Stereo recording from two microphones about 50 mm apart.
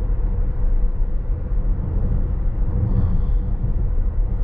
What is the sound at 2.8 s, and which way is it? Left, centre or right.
Vehicle, centre.